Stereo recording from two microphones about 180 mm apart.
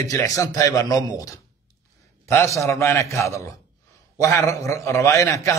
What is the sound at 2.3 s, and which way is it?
A man's voice, 15° left (ahead or behind).